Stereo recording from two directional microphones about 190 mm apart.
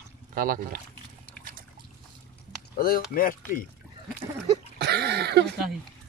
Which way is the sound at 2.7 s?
50° left (ahead or behind).